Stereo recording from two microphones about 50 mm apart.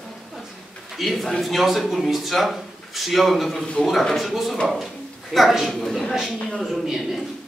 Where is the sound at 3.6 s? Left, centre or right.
Centre.